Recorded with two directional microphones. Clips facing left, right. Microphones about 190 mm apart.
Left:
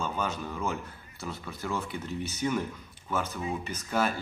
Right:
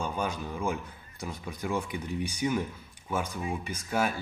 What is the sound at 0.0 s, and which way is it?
A man's voice, 10° right (ahead or behind).